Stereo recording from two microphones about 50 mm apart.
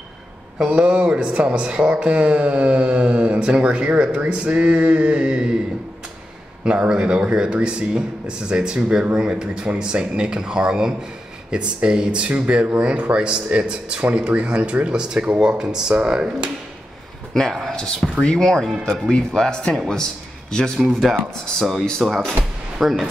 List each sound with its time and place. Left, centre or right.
0.6 s speech: centre
6.6 s speech: centre
17.3 s speech: centre
20.8 s speech: centre
22.3 s speech: centre